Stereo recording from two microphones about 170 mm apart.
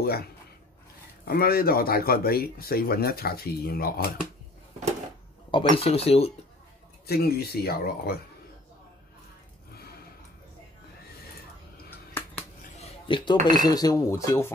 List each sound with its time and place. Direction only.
0.0 s speech: 65° left (ahead or behind)
5.8 s speech: 35° left (ahead or behind)
7.1 s speech: 65° left (ahead or behind)
12.1 s finger snapping: 10° left (ahead or behind)
13.1 s speech: 25° left (ahead or behind)